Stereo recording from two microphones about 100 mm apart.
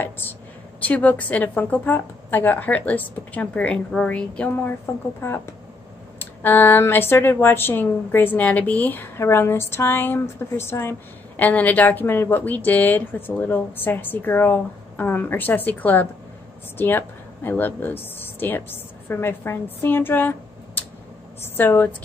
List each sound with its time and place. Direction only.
0.0 s a woman's voice: 15° left (ahead or behind)
5.2 s a woman's voice: 25° left (ahead or behind)